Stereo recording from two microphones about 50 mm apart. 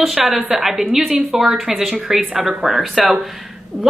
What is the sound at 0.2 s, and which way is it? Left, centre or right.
A woman's voice, centre.